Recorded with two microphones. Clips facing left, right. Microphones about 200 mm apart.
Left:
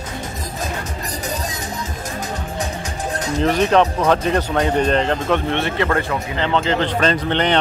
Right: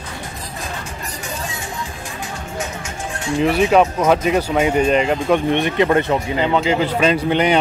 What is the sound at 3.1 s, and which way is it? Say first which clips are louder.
Music: right 3 dB; 40° left (ahead or behind).